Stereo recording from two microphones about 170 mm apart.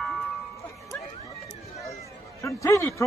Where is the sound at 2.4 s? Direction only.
15° left (ahead or behind).